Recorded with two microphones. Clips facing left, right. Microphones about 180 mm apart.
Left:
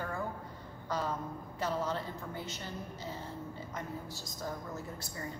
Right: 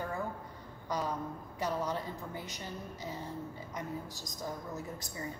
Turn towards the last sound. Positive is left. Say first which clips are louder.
# right 1 dB
turn(degrees=-15)  # may be behind; listen again after turning